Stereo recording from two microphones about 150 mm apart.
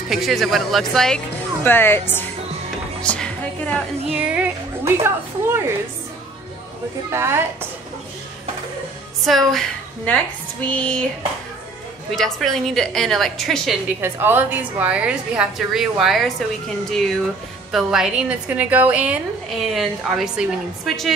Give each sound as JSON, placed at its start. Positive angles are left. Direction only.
{"t": 0.1, "sound": "a woman's voice", "side_deg": 0}
{"t": 3.0, "sound": "music", "side_deg": 5}
{"t": 4.4, "sound": "music", "side_deg": -15}
{"t": 7.1, "sound": "a woman's voice", "side_deg": -15}
{"t": 9.2, "sound": "speech", "side_deg": 0}
{"t": 10.6, "sound": "a sound", "side_deg": 10}
{"t": 12.2, "sound": "a woman's voice", "side_deg": 5}
{"t": 13.8, "sound": "a woman's voice", "side_deg": -15}
{"t": 17.6, "sound": "a woman's voice", "side_deg": -5}